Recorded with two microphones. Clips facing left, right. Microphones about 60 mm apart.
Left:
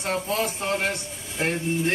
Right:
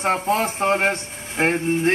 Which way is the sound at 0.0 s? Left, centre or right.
Right.